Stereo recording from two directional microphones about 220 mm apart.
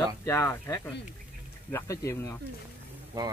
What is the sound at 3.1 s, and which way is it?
Speech, 20° right (ahead or behind).